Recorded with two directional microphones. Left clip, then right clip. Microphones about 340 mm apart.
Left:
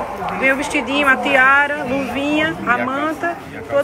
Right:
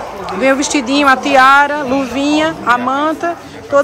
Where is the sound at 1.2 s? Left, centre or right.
Centre.